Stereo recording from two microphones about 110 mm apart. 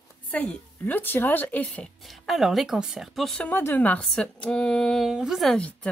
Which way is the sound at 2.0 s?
Centre (ahead or behind).